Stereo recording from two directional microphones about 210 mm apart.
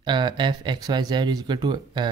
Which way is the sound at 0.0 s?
20° right (ahead or behind).